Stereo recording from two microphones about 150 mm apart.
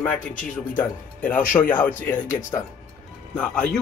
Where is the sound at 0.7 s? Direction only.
10° left (ahead or behind).